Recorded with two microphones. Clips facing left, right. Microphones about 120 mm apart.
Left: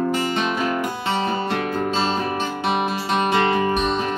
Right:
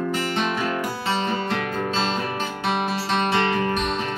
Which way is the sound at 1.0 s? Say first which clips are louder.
Left 1 dB; 10° left (ahead or behind).